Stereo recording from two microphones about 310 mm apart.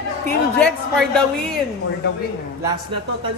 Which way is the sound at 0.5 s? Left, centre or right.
Centre.